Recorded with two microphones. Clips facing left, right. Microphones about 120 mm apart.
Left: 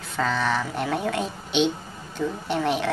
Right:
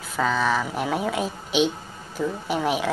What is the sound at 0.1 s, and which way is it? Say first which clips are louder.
Speech: right 2 dB; 5° right (ahead or behind).